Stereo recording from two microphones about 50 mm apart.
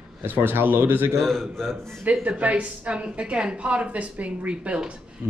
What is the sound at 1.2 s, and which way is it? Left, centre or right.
Speech, centre.